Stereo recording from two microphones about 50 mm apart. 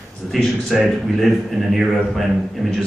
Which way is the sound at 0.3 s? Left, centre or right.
Centre.